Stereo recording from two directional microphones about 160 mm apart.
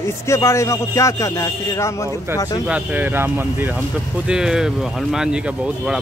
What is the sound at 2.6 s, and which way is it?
Speech, 10° right (ahead or behind).